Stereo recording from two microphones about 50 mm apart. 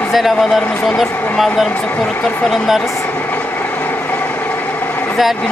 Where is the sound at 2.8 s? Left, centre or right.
Left.